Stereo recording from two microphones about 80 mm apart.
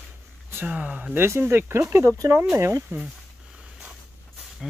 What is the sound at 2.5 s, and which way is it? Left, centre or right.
Speech, right.